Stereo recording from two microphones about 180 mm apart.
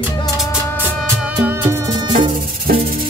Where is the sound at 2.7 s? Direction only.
55° right (ahead or behind).